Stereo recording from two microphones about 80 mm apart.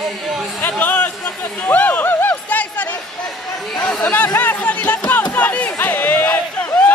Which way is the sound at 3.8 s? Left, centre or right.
Centre.